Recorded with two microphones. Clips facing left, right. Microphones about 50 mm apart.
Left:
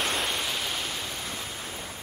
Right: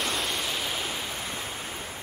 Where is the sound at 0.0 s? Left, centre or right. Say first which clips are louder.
Left 1 dB; centre.